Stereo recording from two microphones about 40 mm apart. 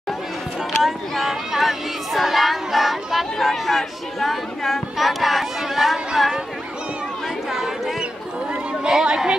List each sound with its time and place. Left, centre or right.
0.8 s a sound: centre
3.3 s speech: centre
8.8 s chatter: centre